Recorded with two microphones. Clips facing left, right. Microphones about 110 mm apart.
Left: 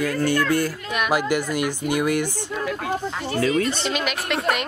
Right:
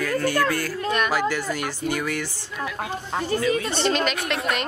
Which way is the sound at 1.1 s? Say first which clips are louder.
Left 2 dB; 15° left (ahead or behind).